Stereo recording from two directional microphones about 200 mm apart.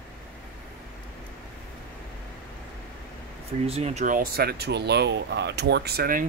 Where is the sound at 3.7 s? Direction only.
30° right (ahead or behind); by 6.3 s 45° right (ahead or behind).